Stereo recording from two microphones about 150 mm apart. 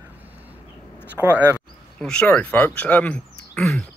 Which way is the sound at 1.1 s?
15° right (ahead or behind).